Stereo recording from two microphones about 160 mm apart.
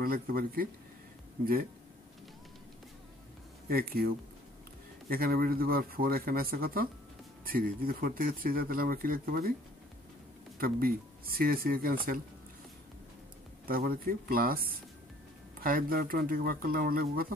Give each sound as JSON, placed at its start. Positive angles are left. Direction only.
{"t": 0.0, "sound": "speech", "side_deg": -65}
{"t": 3.6, "sound": "speech", "side_deg": -70}
{"t": 10.6, "sound": "speech", "side_deg": -70}
{"t": 13.7, "sound": "speech", "side_deg": -65}